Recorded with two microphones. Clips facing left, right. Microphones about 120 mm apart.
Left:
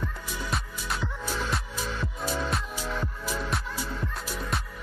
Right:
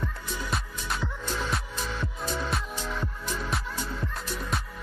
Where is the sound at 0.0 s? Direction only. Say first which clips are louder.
Even; centre (ahead or behind).